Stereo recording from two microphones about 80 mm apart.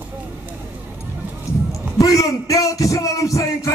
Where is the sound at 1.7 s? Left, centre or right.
Left.